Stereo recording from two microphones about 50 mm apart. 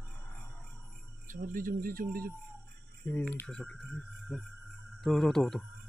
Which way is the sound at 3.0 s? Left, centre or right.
Left.